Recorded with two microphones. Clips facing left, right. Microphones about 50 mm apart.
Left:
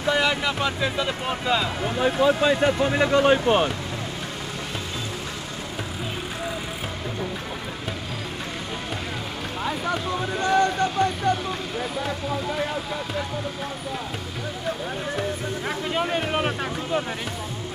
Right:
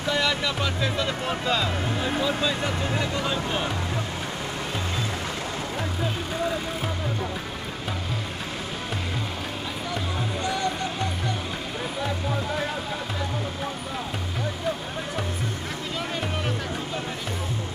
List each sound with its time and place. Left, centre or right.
0.1 s speech: left
2.0 s speech: left
10.4 s a sound: left
15.9 s vehicle: left